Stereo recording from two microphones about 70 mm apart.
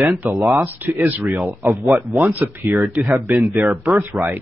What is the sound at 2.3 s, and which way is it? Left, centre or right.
Speech, right.